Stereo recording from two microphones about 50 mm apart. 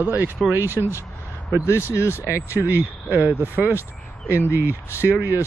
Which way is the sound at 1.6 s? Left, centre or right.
Left.